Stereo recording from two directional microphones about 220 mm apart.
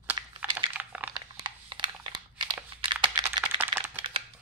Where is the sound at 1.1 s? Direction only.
20° right (ahead or behind).